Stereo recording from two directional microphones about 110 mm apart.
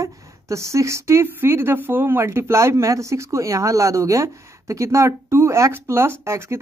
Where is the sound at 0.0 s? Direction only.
25° right (ahead or behind).